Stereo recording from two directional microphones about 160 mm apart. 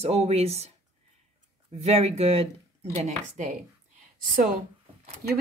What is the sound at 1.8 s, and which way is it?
Speech, 40° right (ahead or behind).